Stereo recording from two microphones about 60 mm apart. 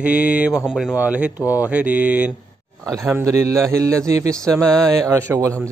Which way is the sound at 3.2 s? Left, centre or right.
Right.